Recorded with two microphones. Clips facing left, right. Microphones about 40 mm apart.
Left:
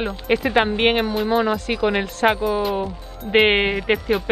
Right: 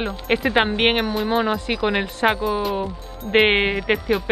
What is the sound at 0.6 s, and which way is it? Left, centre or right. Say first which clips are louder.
Speech: left 1 dB; right.